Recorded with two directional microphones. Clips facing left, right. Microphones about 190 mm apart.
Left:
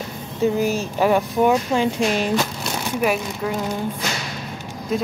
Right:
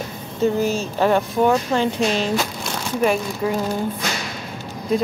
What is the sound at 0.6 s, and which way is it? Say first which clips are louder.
Speech: even; 10° left (ahead or behind).